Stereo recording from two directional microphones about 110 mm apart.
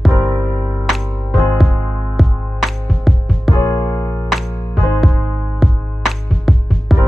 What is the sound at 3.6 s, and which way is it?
Music, 35° left (ahead or behind).